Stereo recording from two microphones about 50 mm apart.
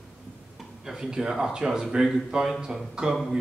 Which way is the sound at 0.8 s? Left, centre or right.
Centre.